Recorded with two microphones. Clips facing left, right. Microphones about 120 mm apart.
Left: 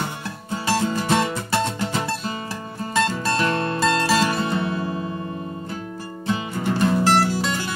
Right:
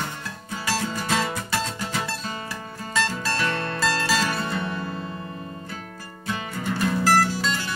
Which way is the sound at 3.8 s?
25° left (ahead or behind).